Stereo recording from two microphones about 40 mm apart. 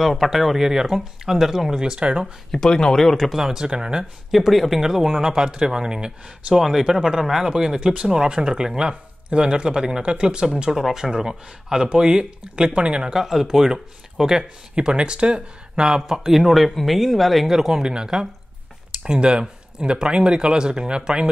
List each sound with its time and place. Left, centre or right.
0.0 s speech: centre
1.8 s speech: right
2.5 s speech: centre
3.3 s speech: centre
3.6 s speech: right
4.0 s speech: centre; by 13.1 s right
13.1 s speech: centre
17.8 s speech: centre